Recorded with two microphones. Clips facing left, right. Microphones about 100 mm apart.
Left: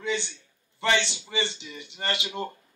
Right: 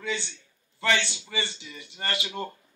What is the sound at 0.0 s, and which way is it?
A man's voice, 20° left (ahead or behind).